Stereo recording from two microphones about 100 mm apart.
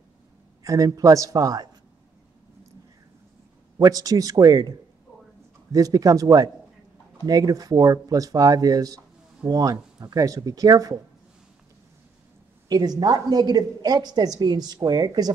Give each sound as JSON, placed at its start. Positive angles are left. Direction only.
{"t": 0.7, "sound": "a woman's voice", "side_deg": -35}
{"t": 3.7, "sound": "a woman's voice", "side_deg": -35}
{"t": 12.6, "sound": "a woman's voice", "side_deg": -40}